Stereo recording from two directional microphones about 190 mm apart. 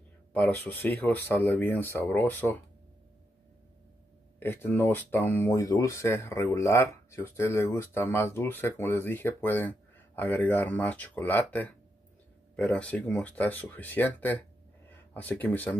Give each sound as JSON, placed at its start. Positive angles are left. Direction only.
{"t": 0.3, "sound": "speech", "side_deg": 10}
{"t": 4.4, "sound": "speech", "side_deg": 10}